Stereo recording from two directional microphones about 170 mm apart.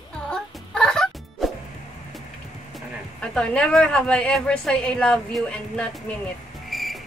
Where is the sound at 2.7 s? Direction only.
5° left (ahead or behind).